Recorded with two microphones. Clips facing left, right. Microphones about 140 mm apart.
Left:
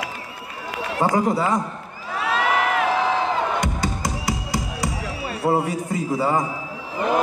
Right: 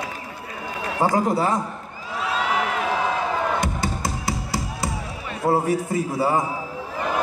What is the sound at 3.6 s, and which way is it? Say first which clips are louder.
Music: left 1 dB; 20° left (ahead or behind).